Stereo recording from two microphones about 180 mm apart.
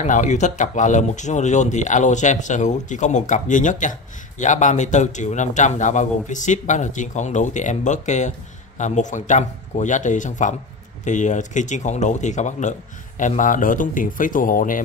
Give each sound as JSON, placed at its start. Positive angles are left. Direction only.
{"t": 0.0, "sound": "a man's voice", "side_deg": 45}